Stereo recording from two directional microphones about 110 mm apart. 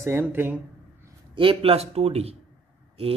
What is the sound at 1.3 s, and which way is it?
Speech, 55° right (ahead or behind).